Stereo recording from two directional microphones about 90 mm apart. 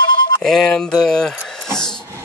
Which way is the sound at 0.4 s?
5° left (ahead or behind).